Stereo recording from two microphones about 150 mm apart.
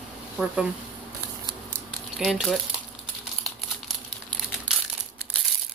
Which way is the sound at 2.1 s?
5° right (ahead or behind).